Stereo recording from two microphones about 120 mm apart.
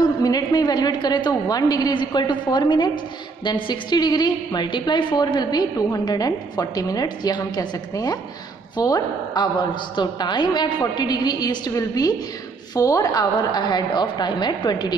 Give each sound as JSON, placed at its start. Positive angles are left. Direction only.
{"t": 0.2, "sound": "a woman's voice", "side_deg": 30}